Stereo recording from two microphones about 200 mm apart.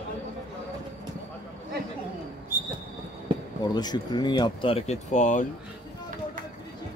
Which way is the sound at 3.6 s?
20° left (ahead or behind).